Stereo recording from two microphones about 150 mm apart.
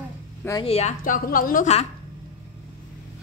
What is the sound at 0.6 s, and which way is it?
A woman's voice, 45° left (ahead or behind).